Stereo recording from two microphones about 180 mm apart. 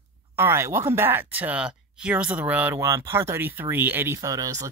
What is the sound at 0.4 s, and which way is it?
Speech, 15° right (ahead or behind).